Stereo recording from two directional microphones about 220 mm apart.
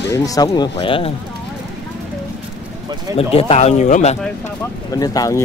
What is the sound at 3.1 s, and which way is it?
Speech, 25° left (ahead or behind).